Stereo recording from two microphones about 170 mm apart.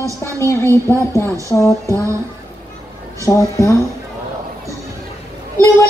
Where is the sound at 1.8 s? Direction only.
15° right (ahead or behind).